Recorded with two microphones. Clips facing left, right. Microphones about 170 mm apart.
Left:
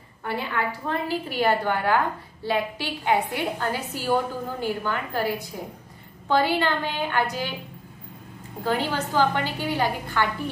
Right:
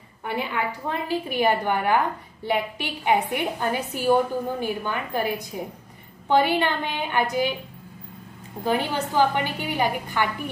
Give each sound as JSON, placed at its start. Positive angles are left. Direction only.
{"t": 0.2, "sound": "a woman's voice", "side_deg": -15}
{"t": 8.6, "sound": "a woman's voice", "side_deg": -15}